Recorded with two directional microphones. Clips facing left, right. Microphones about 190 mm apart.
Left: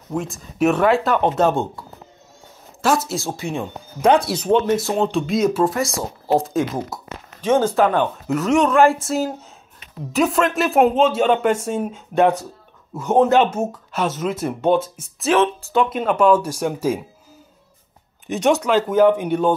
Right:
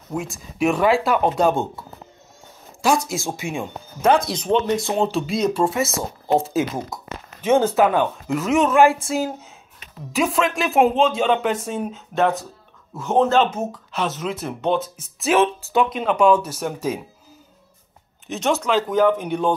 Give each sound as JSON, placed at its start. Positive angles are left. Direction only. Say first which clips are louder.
{"t": 0.2, "sound": "speech", "louder": "left 3 dB", "side_deg": 40}
{"t": 0.7, "sound": "speech", "louder": "left 1 dB", "side_deg": -5}
{"t": 15.2, "sound": "speech", "louder": "left 1 dB", "side_deg": -10}
{"t": 15.9, "sound": "speech", "louder": "left 1 dB", "side_deg": 5}
{"t": 18.4, "sound": "speech", "louder": "left 3 dB", "side_deg": 10}